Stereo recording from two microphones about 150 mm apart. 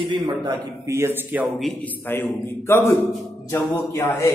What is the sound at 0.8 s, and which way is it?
Speech, 15° right (ahead or behind).